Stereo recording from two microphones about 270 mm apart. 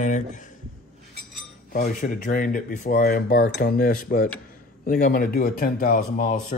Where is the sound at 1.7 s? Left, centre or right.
Left.